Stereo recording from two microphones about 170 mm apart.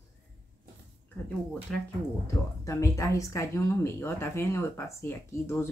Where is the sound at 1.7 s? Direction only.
5° left (ahead or behind).